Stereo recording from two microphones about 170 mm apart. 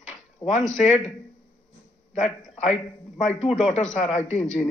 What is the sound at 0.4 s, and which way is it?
Speech, 25° left (ahead or behind).